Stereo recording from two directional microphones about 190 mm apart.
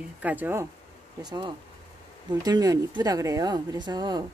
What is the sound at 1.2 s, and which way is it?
Speech, 20° right (ahead or behind).